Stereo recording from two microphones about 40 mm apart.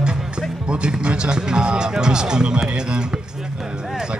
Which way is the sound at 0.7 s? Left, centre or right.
Right.